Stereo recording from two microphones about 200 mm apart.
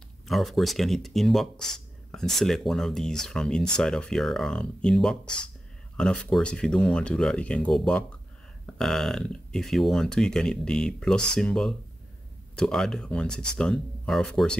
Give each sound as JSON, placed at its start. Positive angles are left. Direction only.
{"t": 0.3, "sound": "speech", "side_deg": 0}